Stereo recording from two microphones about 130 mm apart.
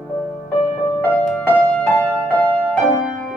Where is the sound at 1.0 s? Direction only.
15° left (ahead or behind).